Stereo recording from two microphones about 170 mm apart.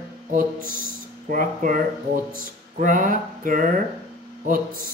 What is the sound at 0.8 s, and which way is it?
Speech, 50° right (ahead or behind).